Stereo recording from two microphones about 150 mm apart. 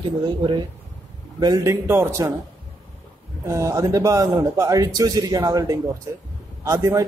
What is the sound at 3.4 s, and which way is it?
Speech, 20° right (ahead or behind).